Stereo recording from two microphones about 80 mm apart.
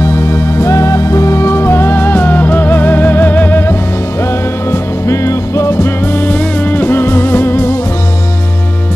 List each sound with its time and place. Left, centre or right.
0.0 s music: left
4.6 s music: left